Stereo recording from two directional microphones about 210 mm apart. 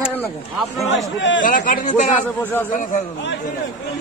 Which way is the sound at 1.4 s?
40° left (ahead or behind).